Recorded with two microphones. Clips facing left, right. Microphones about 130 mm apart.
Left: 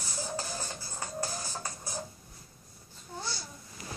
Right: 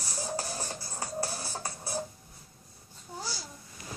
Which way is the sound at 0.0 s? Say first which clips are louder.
Right 2 dB; 35° right (ahead or behind).